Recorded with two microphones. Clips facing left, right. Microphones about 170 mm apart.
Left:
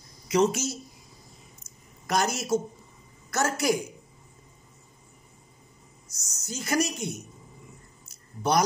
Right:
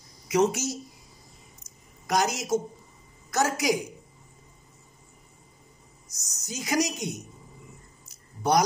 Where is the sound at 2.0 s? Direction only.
15° right (ahead or behind).